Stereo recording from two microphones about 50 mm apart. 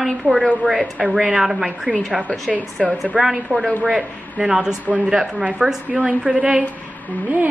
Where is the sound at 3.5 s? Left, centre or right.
Right.